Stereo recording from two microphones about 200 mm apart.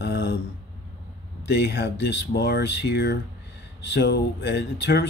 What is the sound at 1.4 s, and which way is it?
Speech, 55° left (ahead or behind).